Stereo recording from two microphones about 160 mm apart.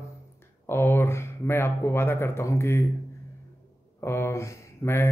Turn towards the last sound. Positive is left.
turn(degrees=15)  # may be behind; listen again after turning